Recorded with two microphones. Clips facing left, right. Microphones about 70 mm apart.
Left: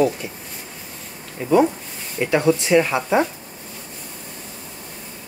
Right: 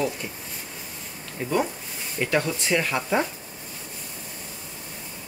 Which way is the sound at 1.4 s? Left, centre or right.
Centre.